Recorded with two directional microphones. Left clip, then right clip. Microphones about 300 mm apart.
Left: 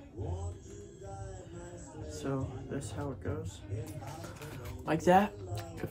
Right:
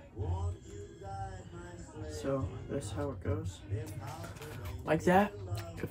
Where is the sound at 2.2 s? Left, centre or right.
Centre.